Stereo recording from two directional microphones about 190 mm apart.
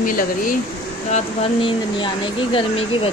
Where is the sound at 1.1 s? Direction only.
30° left (ahead or behind).